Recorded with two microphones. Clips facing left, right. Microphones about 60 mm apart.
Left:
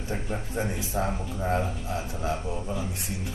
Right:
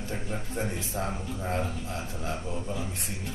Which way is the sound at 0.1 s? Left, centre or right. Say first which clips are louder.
Left 4 dB; centre.